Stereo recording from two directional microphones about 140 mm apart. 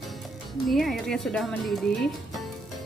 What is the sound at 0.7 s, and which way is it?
Speech, centre (ahead or behind).